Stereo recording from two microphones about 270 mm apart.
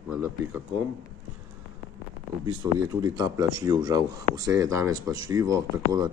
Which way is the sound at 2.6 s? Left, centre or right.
Centre.